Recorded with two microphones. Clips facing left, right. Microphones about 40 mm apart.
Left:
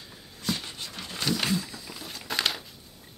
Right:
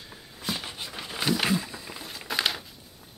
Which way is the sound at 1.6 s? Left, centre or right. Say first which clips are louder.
Right 1 dB; right.